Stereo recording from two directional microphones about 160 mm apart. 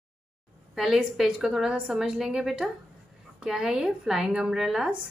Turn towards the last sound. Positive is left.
turn(degrees=-5)  # may be behind; listen again after turning